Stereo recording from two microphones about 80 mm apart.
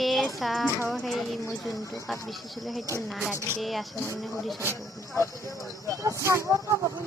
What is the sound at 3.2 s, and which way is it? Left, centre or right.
Speech, right.